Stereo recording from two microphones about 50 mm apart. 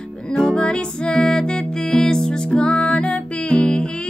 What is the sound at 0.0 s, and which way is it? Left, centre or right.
Music, centre.